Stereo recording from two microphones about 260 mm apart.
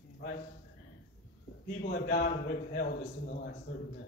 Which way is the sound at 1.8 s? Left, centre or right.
Left.